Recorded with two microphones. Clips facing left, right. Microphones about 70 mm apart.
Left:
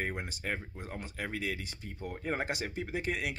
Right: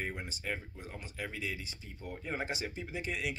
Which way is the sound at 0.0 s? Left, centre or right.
Left.